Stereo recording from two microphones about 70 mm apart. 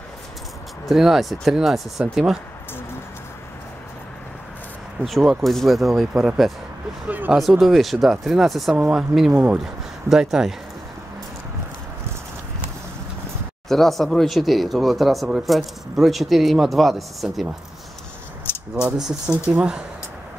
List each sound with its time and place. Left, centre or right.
0.8 s speech: centre
5.0 s speech: centre
7.1 s a sound: right
7.3 s speech: centre
9.3 s speech: right
10.0 s speech: centre
13.7 s speech: centre
18.5 s a sound: left
18.9 s speech: centre